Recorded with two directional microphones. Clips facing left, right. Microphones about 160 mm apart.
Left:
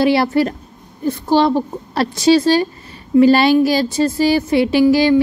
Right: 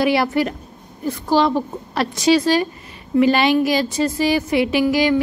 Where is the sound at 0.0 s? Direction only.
30° left (ahead or behind).